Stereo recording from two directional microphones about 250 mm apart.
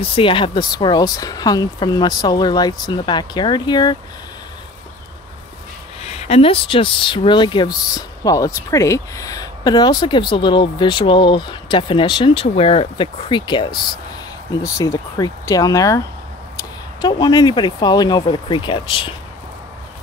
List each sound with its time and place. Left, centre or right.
0.1 s speech: left
6.0 s speech: left